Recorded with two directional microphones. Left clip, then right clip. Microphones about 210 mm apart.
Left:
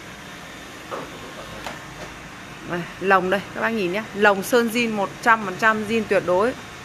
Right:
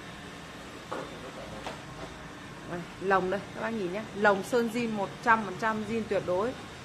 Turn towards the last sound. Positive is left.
turn(degrees=30)  # may be behind; listen again after turning